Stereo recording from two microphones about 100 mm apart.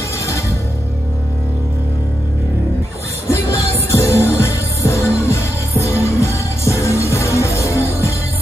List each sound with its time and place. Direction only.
3.9 s music: 25° left (ahead or behind)